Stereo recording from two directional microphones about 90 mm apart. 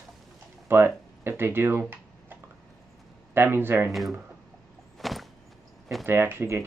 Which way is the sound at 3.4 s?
25° right (ahead or behind).